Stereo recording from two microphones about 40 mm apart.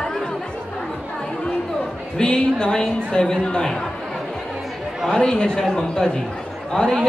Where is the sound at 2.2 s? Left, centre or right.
Left.